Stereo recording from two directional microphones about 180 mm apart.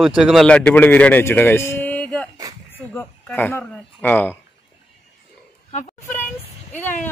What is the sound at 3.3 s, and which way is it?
A man's voice, 10° left (ahead or behind).